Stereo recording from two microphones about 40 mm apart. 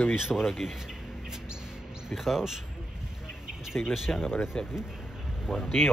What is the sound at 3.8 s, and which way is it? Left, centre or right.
Speech, left.